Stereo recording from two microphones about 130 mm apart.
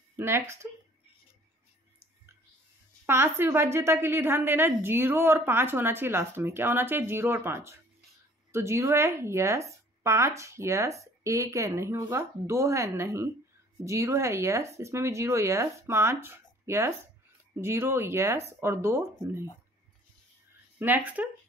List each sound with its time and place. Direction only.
0.1 s speech: 20° right (ahead or behind)
3.1 s a woman's voice: 20° right (ahead or behind)
20.8 s a woman's voice: 15° right (ahead or behind)